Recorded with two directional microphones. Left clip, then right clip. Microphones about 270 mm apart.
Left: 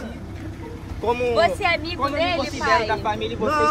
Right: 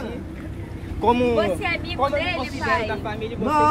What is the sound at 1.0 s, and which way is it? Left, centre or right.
Speech, right.